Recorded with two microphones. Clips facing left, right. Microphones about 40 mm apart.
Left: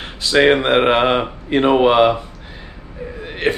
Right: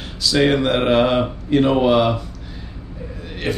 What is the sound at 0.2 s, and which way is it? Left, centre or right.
Speech, left.